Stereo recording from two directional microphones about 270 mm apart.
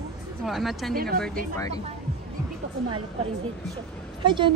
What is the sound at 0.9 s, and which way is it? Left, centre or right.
Speech, right.